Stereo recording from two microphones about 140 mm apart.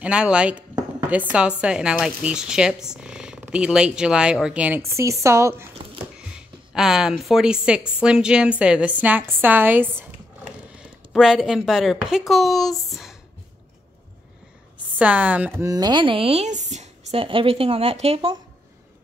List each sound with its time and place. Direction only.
0.0 s a woman's voice: 10° right (ahead or behind)
6.7 s a woman's voice: 5° right (ahead or behind)
10.8 s speech: 5° right (ahead or behind)
15.0 s a woman's voice: 10° right (ahead or behind)
15.6 s speech: 25° right (ahead or behind); by 18.3 s 45° right (ahead or behind)